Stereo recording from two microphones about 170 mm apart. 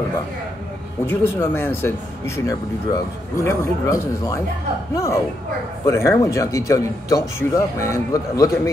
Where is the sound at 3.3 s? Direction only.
20° left (ahead or behind).